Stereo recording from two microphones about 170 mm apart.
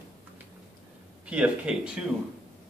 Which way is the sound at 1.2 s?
5° right (ahead or behind).